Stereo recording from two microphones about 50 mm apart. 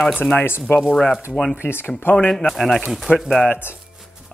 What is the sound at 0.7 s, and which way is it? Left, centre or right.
Speech, left.